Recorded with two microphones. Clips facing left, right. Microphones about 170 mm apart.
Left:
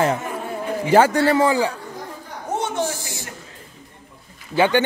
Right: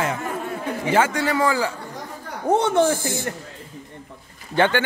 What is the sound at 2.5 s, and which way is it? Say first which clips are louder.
Speech: right 6 dB; 60° right (ahead or behind).